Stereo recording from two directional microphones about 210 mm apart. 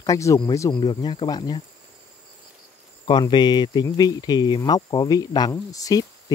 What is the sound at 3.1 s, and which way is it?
Speech, 20° left (ahead or behind).